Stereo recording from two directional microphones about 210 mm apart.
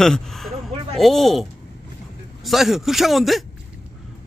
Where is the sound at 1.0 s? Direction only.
Centre (ahead or behind).